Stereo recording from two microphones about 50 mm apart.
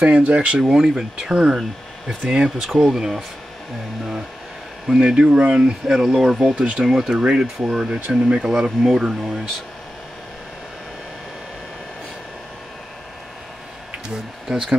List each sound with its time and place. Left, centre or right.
0.0 s speech: right
0.6 s speech: centre
1.5 s speech: centre
2.2 s speech: centre
4.8 s speech: centre
5.6 s speech: centre
6.9 s speech: centre
7.2 s speech: centre
14.5 s speech: centre